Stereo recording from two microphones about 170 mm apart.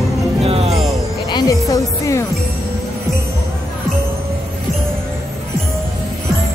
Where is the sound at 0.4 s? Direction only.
35° right (ahead or behind).